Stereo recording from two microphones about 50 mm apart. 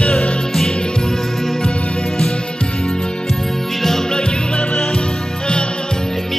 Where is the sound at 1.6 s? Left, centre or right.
Left.